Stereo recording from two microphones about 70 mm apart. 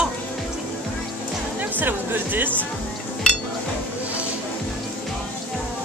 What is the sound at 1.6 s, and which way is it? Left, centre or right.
Speech, right.